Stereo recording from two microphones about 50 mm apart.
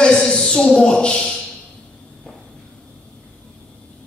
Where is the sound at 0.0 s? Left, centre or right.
Centre.